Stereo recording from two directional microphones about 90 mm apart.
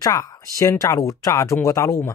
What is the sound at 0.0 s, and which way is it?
Speech, 40° left (ahead or behind).